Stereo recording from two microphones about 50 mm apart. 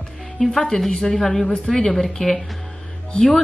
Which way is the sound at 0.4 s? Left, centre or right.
Centre.